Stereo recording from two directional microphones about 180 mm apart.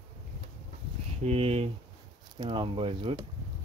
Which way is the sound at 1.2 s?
35° right (ahead or behind).